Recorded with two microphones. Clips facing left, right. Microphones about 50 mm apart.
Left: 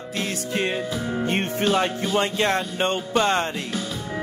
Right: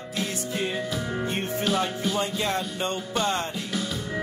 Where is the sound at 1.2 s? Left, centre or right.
Left.